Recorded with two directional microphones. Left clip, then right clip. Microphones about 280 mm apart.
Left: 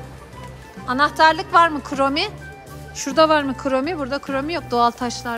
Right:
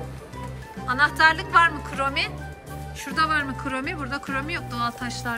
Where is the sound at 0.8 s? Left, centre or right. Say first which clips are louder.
Left 3 dB; centre.